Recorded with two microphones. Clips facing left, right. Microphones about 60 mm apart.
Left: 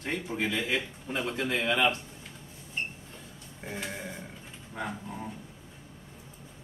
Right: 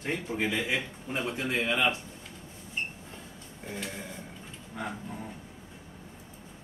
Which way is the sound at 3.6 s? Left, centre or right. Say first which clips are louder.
Left 1 dB; centre.